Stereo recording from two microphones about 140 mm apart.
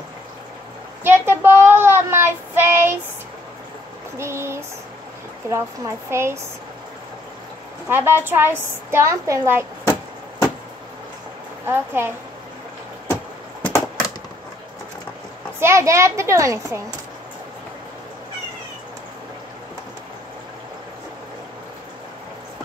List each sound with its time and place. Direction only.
1.0 s child singing: 15° right (ahead or behind)
4.2 s a sound: 20° right (ahead or behind)
5.5 s a child's voice: 20° right (ahead or behind)
7.9 s a woman's voice: 15° right (ahead or behind)
11.6 s a woman's voice: 15° right (ahead or behind)
13.1 s a sound: 10° left (ahead or behind)
15.6 s a child's voice: 20° right (ahead or behind)